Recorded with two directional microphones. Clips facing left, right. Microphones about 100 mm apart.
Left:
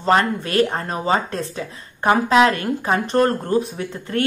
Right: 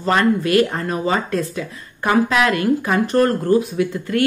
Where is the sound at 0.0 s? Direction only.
30° left (ahead or behind).